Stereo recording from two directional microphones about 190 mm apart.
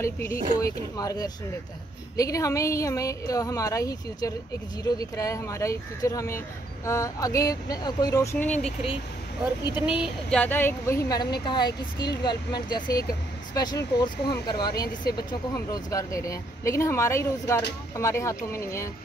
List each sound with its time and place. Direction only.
0.0 s speech: 15° left (ahead or behind)
10.0 s speech: 5° left (ahead or behind)